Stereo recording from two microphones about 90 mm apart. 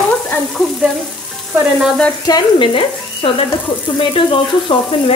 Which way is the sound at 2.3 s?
70° left (ahead or behind).